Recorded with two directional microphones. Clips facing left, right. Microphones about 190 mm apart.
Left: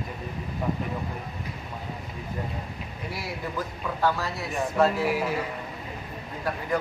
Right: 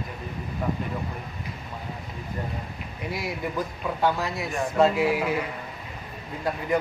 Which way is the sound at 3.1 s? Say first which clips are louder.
Right 4 dB; 20° right (ahead or behind).